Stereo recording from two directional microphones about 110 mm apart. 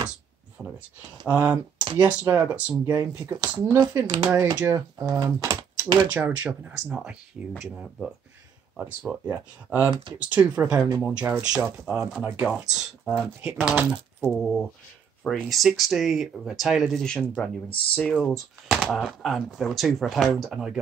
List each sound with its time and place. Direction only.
0.6 s speech: 5° right (ahead or behind)
2.8 s speech: 25° right (ahead or behind)
3.7 s speech: 30° right (ahead or behind)
6.1 s speech: 15° right (ahead or behind)
13.4 s speech: 10° right (ahead or behind)
14.3 s speech: centre (ahead or behind)